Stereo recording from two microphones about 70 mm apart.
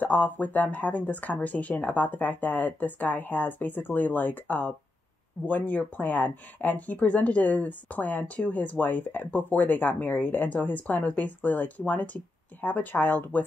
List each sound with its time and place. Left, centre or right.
0.0 s speech: left